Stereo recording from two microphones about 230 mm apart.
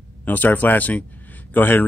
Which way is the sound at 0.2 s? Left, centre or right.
Centre.